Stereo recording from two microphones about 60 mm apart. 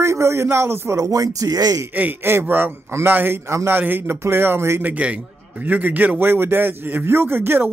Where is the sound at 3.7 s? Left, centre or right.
Right.